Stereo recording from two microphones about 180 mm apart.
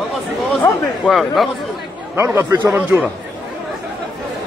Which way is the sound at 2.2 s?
10° right (ahead or behind).